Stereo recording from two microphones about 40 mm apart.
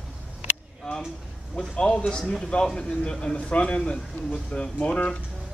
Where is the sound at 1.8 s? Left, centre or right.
Left.